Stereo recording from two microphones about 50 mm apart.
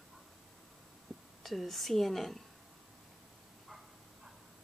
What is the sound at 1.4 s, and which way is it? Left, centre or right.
Speech, centre.